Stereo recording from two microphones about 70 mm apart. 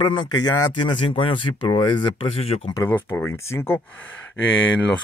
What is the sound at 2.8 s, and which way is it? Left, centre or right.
Speech, left.